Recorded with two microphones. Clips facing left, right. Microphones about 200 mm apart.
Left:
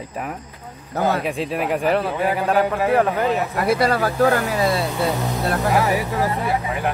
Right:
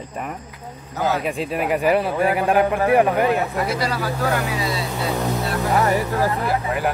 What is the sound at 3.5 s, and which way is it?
Speech, 55° left (ahead or behind).